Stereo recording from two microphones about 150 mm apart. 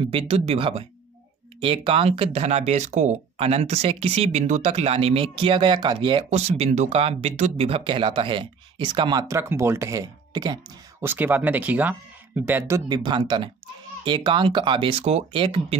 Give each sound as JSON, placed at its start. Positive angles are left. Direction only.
{"t": 0.1, "sound": "speech", "side_deg": -40}
{"t": 6.3, "sound": "speech", "side_deg": -45}
{"t": 9.3, "sound": "speech", "side_deg": -15}
{"t": 11.1, "sound": "speech", "side_deg": -10}